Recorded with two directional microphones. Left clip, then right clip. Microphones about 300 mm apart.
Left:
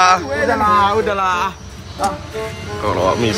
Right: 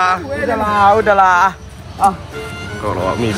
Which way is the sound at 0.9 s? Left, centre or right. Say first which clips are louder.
Right 6 dB; right.